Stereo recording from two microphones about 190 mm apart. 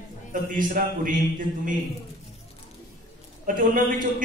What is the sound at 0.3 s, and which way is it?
Speech, 45° right (ahead or behind).